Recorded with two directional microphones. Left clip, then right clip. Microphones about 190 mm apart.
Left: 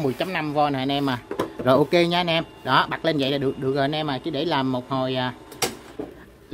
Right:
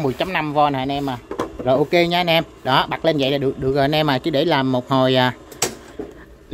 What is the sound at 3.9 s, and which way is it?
Speech, 25° right (ahead or behind).